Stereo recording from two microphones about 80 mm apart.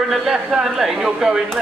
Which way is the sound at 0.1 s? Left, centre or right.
Centre.